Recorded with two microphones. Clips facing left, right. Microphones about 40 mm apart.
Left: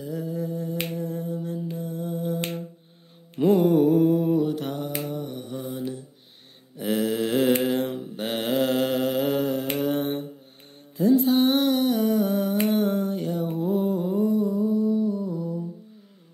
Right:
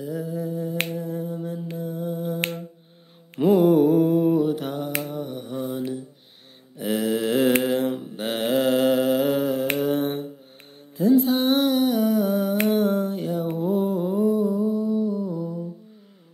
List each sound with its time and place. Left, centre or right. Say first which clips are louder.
0.0 s finger snapping: right 1 dB; centre
1.8 s a sound: right 2 dB; centre
3.3 s mantra: right 2 dB; centre
5.0 s finger snapping: right 1 dB; centre
5.5 s mantra: right 7 dB; centre
6.8 s mantra: right 1 dB; centre
9.8 s humming: right 2 dB; centre
11.0 s a sound: even; centre
13.6 s humming: right 1 dB; centre